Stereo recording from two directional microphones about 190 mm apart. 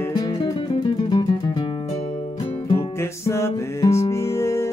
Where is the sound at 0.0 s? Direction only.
20° left (ahead or behind).